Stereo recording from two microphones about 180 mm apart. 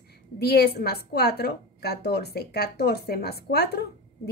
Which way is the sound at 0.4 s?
65° left (ahead or behind).